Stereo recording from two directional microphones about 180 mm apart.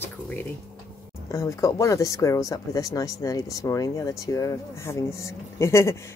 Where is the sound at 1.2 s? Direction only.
15° left (ahead or behind).